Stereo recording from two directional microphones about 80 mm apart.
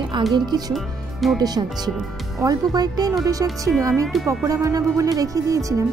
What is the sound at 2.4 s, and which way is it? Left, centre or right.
Speech, right.